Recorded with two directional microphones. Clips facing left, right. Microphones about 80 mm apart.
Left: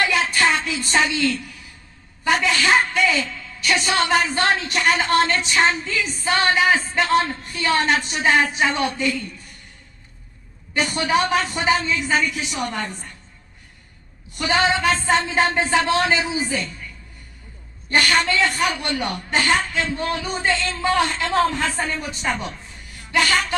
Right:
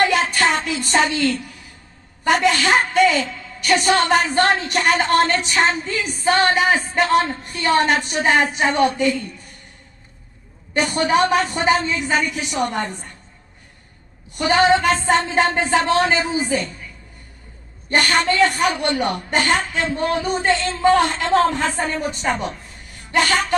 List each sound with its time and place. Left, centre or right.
0.1 s a sound: right
2.2 s a woman's voice: right
10.7 s a woman's voice: right
14.4 s a woman's voice: right
17.8 s a woman's voice: right